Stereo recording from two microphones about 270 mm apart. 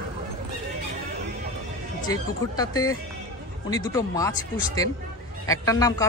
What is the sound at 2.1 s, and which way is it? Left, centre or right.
Speech, centre.